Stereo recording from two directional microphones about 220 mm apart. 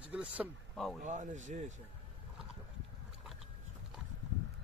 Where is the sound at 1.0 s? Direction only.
35° right (ahead or behind).